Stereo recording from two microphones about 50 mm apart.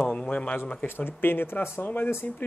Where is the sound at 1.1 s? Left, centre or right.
Left.